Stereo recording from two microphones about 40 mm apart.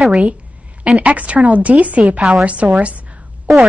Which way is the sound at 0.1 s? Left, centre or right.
Right.